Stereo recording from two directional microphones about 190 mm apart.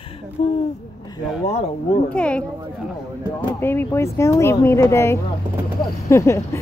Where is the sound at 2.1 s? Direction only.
5° left (ahead or behind).